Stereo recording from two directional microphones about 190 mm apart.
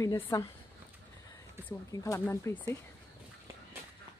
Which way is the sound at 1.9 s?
15° left (ahead or behind).